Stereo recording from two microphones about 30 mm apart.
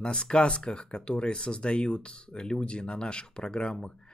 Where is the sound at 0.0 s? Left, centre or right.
Left.